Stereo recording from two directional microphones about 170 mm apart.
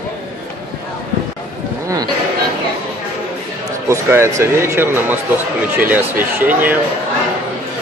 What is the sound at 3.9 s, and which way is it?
Speech, 15° right (ahead or behind).